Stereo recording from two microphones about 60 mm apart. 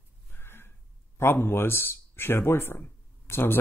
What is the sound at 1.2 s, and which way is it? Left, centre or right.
Speech, left.